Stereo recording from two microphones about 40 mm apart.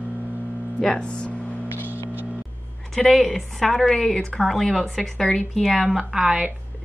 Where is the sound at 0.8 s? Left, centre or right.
Left.